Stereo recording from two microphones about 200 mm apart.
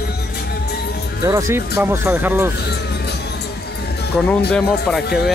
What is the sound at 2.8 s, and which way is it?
Music, 55° left (ahead or behind).